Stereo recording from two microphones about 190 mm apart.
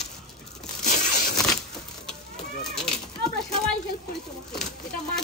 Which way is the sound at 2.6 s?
5° left (ahead or behind).